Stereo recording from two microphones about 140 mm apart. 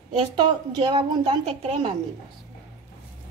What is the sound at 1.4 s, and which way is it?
Speech, 50° right (ahead or behind).